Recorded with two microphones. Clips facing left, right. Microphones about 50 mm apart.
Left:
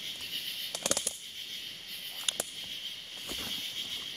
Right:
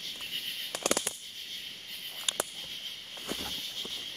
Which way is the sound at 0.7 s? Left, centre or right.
Right.